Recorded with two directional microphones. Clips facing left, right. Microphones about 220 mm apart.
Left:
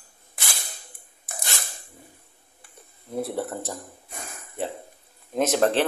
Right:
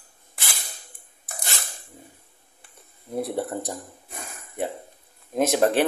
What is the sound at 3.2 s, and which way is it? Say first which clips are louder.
Speech: right 2 dB; 15° right (ahead or behind).